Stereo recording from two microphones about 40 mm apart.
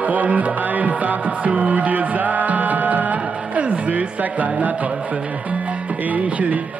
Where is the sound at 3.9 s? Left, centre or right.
Right.